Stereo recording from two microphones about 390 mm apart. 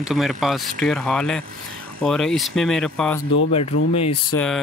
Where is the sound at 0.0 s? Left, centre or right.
Centre.